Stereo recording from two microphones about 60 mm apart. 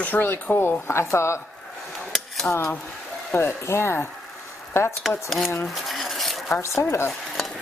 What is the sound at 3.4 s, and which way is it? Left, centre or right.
Speech, left.